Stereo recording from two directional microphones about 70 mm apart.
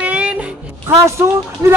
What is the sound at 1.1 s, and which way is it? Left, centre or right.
Speech, right.